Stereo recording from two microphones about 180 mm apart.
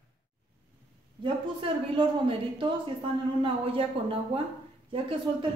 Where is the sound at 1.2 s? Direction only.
30° right (ahead or behind).